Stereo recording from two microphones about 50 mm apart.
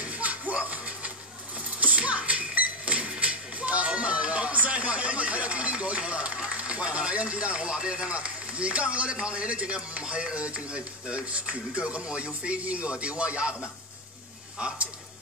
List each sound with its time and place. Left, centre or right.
0.0 s a sound: right
3.2 s music: right
6.6 s speech: centre